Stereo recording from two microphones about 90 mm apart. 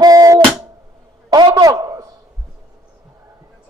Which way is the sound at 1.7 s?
45° right (ahead or behind).